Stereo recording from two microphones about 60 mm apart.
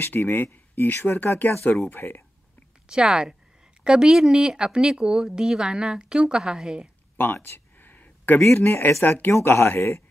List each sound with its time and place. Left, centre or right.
0.0 s speech: left
2.9 s speech: centre
7.4 s a sound: left
8.5 s speech: left